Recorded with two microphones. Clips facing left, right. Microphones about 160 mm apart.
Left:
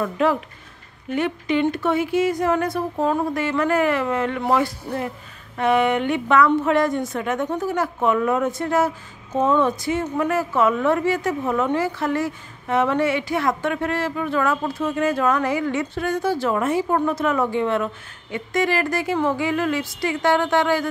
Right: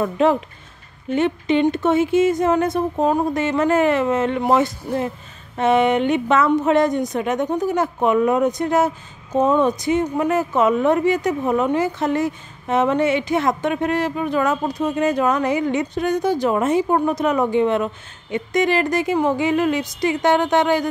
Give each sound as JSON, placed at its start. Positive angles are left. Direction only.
{"t": 0.0, "sound": "speech", "side_deg": -25}